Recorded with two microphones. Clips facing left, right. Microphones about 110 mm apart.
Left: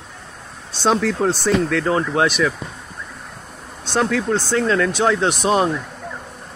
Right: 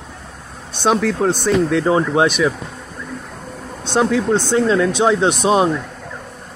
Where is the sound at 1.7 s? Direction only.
20° right (ahead or behind).